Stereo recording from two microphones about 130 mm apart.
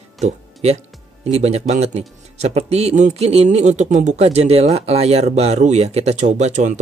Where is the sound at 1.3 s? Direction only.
55° right (ahead or behind).